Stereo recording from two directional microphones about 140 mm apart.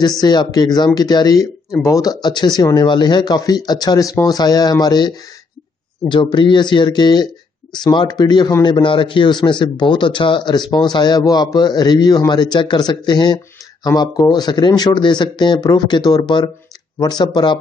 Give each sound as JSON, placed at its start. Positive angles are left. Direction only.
{"t": 0.2, "sound": "a man's voice", "side_deg": 30}